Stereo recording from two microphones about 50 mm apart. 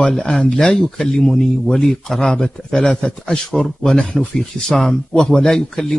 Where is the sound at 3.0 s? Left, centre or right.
Left.